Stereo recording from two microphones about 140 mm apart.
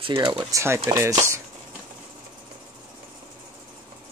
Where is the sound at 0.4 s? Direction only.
20° right (ahead or behind).